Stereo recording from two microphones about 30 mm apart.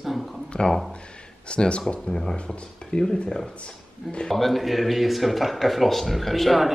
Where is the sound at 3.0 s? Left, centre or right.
Centre.